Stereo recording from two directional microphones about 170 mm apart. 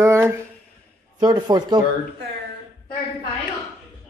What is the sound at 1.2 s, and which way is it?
Speech, 25° right (ahead or behind).